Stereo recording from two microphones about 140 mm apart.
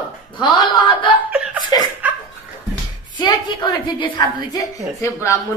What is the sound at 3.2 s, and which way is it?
A woman's voice, 30° left (ahead or behind).